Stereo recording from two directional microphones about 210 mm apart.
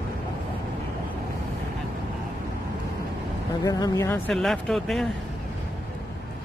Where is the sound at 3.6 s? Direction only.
15° left (ahead or behind).